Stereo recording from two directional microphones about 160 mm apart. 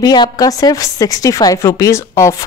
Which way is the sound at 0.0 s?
25° left (ahead or behind).